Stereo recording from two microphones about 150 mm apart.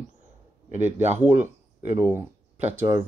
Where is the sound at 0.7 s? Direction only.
50° right (ahead or behind).